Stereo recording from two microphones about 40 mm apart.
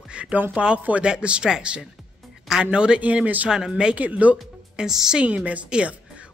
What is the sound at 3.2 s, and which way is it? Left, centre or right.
Speech, right.